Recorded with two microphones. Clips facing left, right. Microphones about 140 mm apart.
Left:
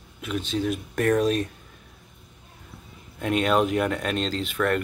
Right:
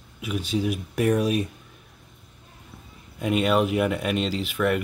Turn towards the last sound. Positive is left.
turn(degrees=-5)  # may be behind; listen again after turning